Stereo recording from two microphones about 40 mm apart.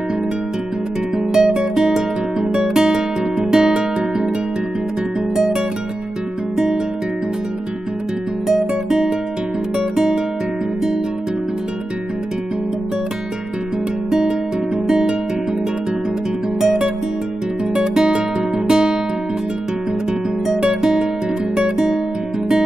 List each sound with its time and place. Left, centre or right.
1.1 s music: centre
5.3 s music: centre
8.5 s guitar: centre
14.9 s music: centre
16.6 s music: right
18.7 s guitar: centre
20.4 s guitar: centre